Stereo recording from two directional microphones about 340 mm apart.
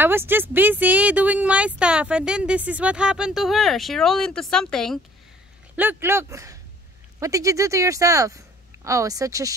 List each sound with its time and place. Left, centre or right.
0.0 s speech: centre